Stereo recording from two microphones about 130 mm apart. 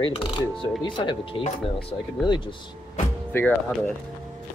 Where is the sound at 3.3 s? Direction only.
15° left (ahead or behind).